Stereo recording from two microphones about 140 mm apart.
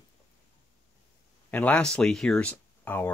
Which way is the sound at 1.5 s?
10° left (ahead or behind).